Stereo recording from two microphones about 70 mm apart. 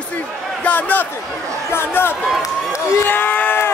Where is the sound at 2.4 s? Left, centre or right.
Left.